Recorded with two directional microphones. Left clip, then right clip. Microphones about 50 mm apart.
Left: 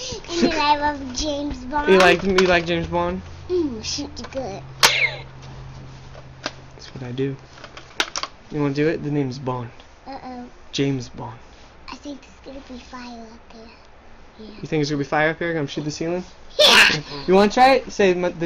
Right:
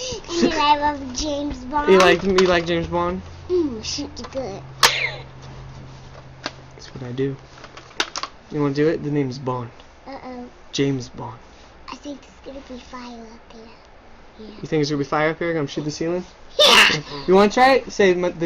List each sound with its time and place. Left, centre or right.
0.2 s child singing: left
0.7 s speech: centre
4.7 s cough: left
6.4 s a sound: left
8.5 s speech: centre